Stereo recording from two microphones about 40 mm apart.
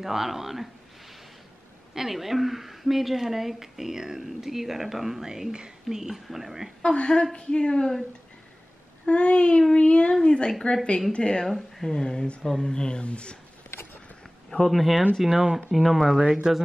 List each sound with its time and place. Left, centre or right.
0.0 s a woman's voice: centre
2.0 s a woman's voice: centre
6.8 s speech: left
9.0 s speech: left
11.4 s speech: centre; by 13.4 s left
14.5 s speech: centre
15.2 s a woman's voice: centre
15.7 s speech: centre